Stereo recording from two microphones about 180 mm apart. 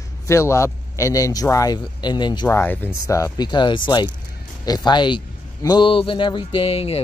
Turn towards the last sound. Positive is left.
turn(degrees=35)  # may be behind; listen again after turning